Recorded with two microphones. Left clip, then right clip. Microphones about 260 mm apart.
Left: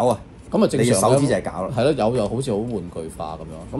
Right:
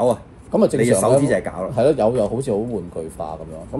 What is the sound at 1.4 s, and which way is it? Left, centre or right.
Speech, left.